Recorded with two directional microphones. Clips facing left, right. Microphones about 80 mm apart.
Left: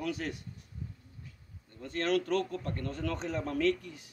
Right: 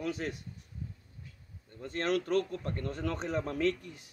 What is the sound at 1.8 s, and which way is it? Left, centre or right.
Speech, right.